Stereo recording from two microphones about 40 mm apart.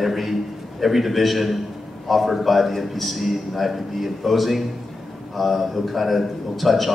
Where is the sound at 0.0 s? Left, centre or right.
Centre.